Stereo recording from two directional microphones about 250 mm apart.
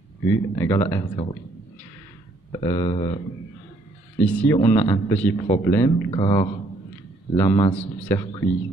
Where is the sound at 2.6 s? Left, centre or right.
Centre.